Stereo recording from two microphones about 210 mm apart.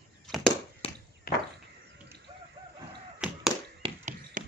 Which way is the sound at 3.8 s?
35° right (ahead or behind).